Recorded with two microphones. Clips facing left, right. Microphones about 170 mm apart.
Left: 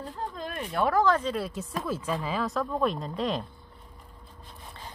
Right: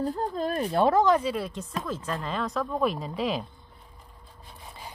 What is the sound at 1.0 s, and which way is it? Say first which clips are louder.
Speech: right 2 dB; 15° right (ahead or behind).